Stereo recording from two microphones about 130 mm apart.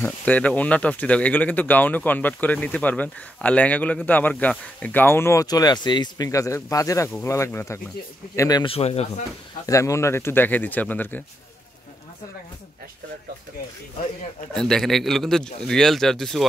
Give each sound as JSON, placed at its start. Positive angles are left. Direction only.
{"t": 0.0, "sound": "speech", "side_deg": 10}
{"t": 8.6, "sound": "speech", "side_deg": 50}
{"t": 9.7, "sound": "speech", "side_deg": 25}
{"t": 14.5, "sound": "speech", "side_deg": 5}